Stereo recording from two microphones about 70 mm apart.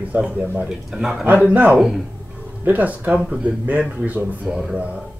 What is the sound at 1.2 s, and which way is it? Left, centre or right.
Speech, right.